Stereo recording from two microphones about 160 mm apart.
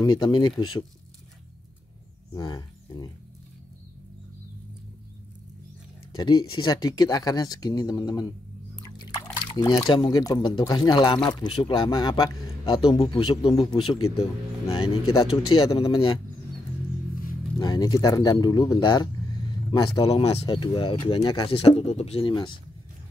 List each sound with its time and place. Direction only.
0.0 s speech: 25° left (ahead or behind)
2.3 s speech: 25° left (ahead or behind)
6.1 s speech: 30° left (ahead or behind)
8.8 s liquid: 25° left (ahead or behind)
9.5 s speech: 25° left (ahead or behind)
17.6 s speech: 25° left (ahead or behind)
20.1 s speech: 40° left (ahead or behind)
22.3 s speech: 30° left (ahead or behind)